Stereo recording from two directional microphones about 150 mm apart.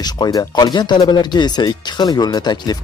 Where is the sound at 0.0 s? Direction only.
25° left (ahead or behind).